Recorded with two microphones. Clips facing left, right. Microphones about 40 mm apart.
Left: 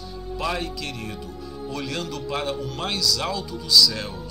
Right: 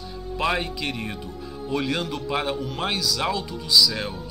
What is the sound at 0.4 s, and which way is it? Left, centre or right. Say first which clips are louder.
Speech: right 3 dB; right.